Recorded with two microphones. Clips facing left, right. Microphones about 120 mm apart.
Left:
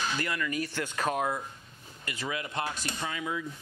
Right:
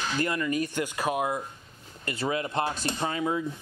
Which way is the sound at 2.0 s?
35° right (ahead or behind).